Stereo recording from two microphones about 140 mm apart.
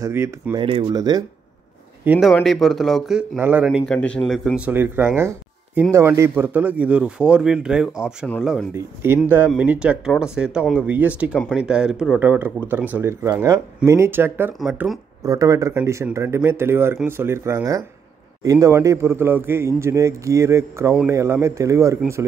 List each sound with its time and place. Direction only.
0.0 s a man's voice: 20° right (ahead or behind)
0.6 s a man's voice: 35° right (ahead or behind)
2.1 s speech: 15° right (ahead or behind)
2.4 s speech: centre (ahead or behind)
3.3 s speech: 15° right (ahead or behind)
3.6 s a man's voice: 5° left (ahead or behind)
4.6 s speech: 10° right (ahead or behind)
9.0 s a man's voice: 15° right (ahead or behind)